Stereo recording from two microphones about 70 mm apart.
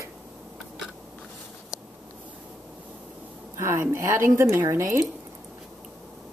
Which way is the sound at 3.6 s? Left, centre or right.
Right.